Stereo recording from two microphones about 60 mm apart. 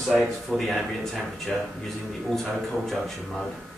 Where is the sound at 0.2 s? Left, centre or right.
Centre.